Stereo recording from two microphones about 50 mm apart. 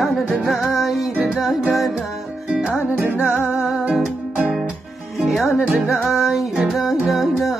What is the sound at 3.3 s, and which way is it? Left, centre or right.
Music, left.